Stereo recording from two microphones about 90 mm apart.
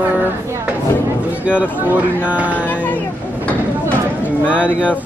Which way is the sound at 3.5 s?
15° left (ahead or behind).